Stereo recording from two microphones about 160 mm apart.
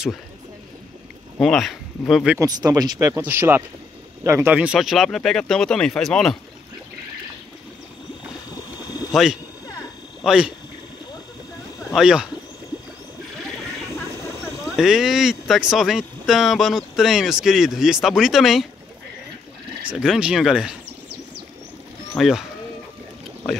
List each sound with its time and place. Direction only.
1.4 s speech: centre (ahead or behind)
2.3 s speech: 25° right (ahead or behind); by 6.3 s 5° left (ahead or behind)
9.1 s speech: centre (ahead or behind)
11.9 s speech: 5° right (ahead or behind)
14.8 s speech: centre (ahead or behind)
19.8 s speech: 5° right (ahead or behind)
22.1 s speech: centre (ahead or behind)